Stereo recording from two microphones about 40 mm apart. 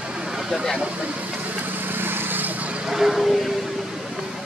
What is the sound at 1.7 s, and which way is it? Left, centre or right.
Vehicle, right.